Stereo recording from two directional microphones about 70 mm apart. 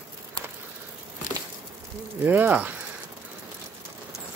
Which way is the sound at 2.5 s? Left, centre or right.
Right.